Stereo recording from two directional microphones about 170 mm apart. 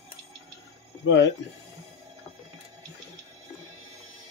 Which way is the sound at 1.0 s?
90° left.